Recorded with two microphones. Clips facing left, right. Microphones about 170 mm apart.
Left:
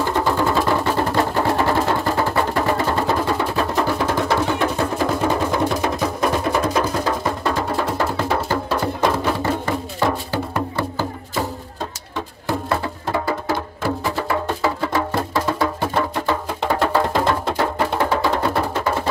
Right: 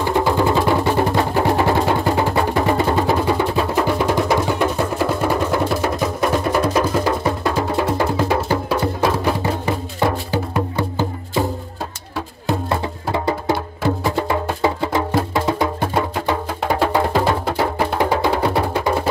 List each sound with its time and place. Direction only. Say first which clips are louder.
0.4 s music: right 2 dB; 15° right (ahead or behind)
12.4 s music: right 1 dB; 20° right (ahead or behind)